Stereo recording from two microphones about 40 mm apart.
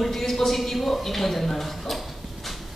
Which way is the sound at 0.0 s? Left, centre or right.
Centre.